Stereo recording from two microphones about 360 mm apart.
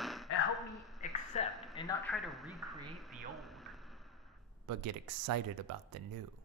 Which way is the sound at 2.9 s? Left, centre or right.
Centre.